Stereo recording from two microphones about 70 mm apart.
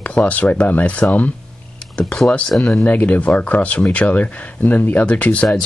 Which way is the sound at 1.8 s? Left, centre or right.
Centre.